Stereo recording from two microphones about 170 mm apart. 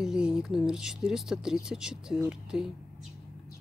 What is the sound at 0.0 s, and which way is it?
Speech, 5° right (ahead or behind).